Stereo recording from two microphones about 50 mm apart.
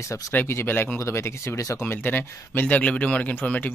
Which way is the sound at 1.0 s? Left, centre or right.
Left.